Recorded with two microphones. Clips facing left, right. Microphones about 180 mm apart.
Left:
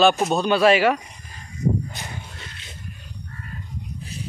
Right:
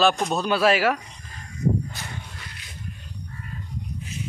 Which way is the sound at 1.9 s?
20° left (ahead or behind).